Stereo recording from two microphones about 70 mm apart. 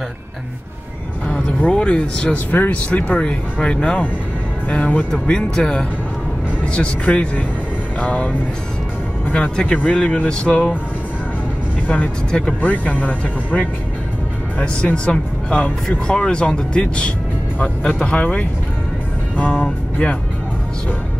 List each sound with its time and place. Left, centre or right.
1.2 s speech: centre
12.3 s speech: centre
12.6 s speech: left